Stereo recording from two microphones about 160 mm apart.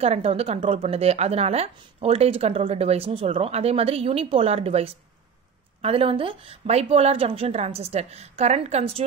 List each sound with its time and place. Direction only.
0.0 s a woman's voice: 40° right (ahead or behind)